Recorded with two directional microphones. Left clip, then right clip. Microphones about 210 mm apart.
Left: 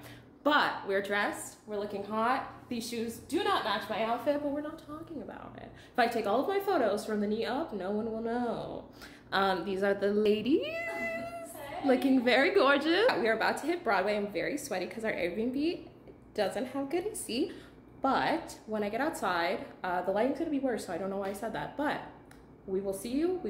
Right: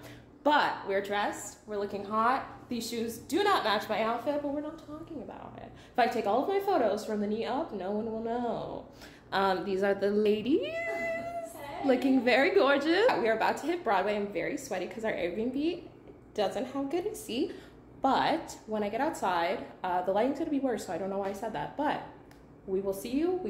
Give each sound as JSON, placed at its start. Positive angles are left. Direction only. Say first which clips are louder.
{"t": 0.4, "sound": "speech", "louder": "right 1 dB", "side_deg": 5}
{"t": 1.7, "sound": "a woman's voice", "louder": "right 2 dB", "side_deg": -10}
{"t": 3.3, "sound": "a woman's voice", "louder": "right 3 dB", "side_deg": -40}
{"t": 4.3, "sound": "speech", "louder": "left 1 dB", "side_deg": 15}
{"t": 5.9, "sound": "a woman's voice", "louder": "right 1 dB", "side_deg": 10}
{"t": 10.2, "sound": "a sound", "louder": "even", "side_deg": 10}
{"t": 11.8, "sound": "a woman's voice", "louder": "right 1 dB", "side_deg": 0}